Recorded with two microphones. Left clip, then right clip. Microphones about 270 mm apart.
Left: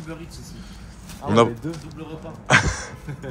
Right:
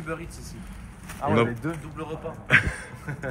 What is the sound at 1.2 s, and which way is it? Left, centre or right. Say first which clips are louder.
Speech: even; right.